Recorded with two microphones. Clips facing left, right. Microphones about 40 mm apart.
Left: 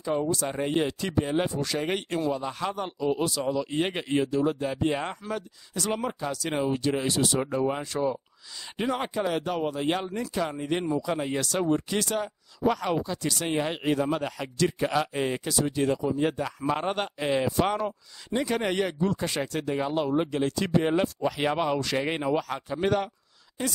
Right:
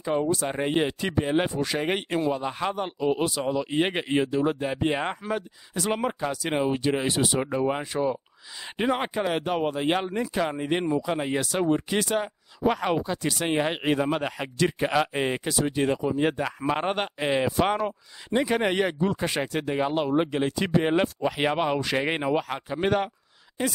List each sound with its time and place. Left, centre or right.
0.0 s speech: right